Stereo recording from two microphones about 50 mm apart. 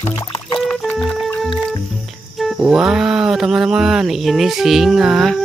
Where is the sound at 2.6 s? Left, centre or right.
Centre.